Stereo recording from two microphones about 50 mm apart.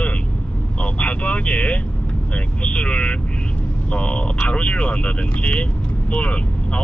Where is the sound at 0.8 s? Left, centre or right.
Left.